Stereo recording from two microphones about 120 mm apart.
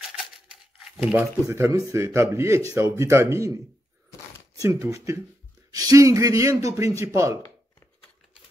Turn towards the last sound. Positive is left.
turn(degrees=-25)  # may be behind; listen again after turning